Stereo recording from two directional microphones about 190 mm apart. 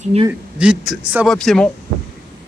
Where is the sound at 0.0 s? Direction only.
30° right (ahead or behind).